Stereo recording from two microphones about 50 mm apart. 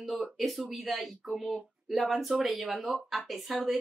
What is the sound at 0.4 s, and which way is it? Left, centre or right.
Speech, centre.